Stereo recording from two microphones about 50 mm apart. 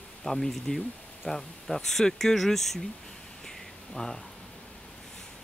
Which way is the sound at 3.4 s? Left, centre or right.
Centre.